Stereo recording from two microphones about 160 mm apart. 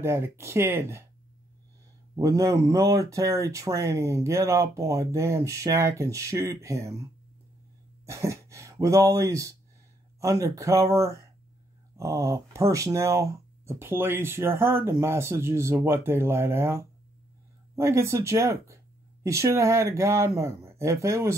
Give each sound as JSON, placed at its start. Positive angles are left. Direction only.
{"t": 0.0, "sound": "speech", "side_deg": -15}
{"t": 2.1, "sound": "speech", "side_deg": -20}